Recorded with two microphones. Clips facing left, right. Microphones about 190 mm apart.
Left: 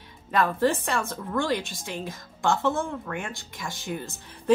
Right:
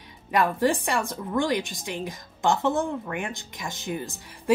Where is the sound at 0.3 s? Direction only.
15° right (ahead or behind).